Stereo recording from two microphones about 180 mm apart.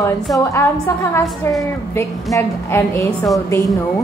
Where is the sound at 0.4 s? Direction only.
15° left (ahead or behind).